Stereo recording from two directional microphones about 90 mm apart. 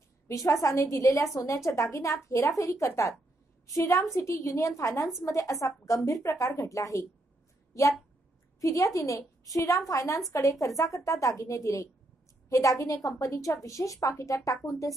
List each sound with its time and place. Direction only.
0.3 s a woman's voice: 40° left (ahead or behind)
8.5 s a woman's voice: 40° left (ahead or behind)